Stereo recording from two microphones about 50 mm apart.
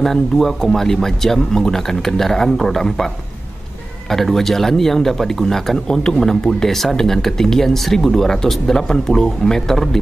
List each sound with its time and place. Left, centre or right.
0.0 s speech: centre
4.1 s speech: centre